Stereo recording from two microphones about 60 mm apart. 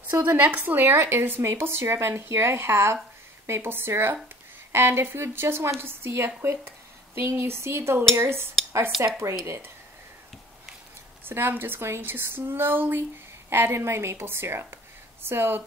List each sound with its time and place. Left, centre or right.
0.1 s speech: right
8.9 s speech: centre
11.2 s speech: right